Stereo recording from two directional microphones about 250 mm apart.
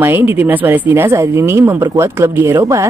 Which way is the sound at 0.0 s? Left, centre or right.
Centre.